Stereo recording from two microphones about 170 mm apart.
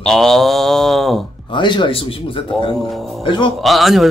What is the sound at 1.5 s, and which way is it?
Speech, 30° left (ahead or behind).